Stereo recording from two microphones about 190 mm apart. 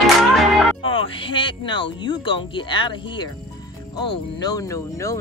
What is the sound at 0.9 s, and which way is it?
Speech, 25° left (ahead or behind).